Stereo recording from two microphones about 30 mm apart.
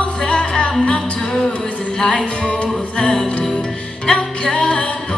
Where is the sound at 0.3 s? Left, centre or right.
Left.